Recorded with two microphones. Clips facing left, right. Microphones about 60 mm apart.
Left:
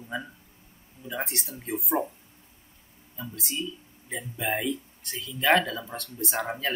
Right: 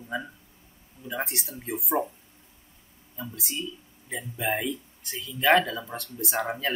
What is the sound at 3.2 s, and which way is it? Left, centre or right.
Speech, centre.